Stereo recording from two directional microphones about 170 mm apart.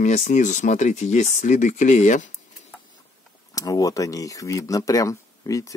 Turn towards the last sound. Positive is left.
turn(degrees=20)  # may be behind; listen again after turning